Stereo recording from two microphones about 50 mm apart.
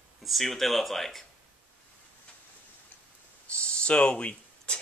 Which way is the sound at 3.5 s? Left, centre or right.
Left.